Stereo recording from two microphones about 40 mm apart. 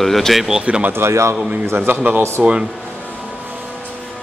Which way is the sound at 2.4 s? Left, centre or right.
Centre.